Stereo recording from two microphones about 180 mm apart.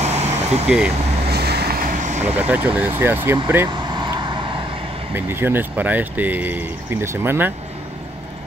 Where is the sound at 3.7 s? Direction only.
25° right (ahead or behind).